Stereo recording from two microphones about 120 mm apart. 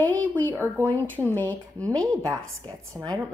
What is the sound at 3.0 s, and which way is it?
Speech, 15° right (ahead or behind).